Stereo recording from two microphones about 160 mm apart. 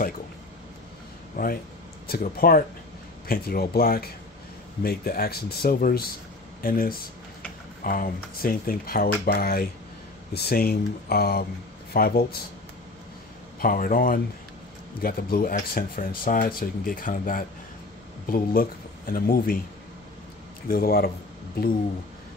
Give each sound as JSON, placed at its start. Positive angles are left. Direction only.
{"t": 1.3, "sound": "speech", "side_deg": 65}
{"t": 13.6, "sound": "speech", "side_deg": 60}
{"t": 15.7, "sound": "speech", "side_deg": 60}
{"t": 20.6, "sound": "speech", "side_deg": 70}